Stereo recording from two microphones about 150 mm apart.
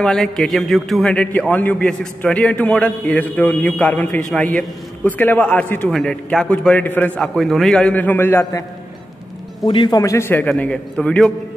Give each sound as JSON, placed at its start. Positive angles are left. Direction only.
{"t": 0.0, "sound": "a man's voice", "side_deg": 5}
{"t": 9.7, "sound": "a man's voice", "side_deg": 30}